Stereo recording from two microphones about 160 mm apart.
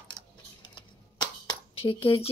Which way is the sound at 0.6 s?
25° left (ahead or behind).